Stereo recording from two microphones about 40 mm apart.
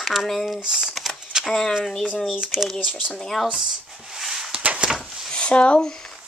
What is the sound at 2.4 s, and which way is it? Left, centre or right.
Speech, centre.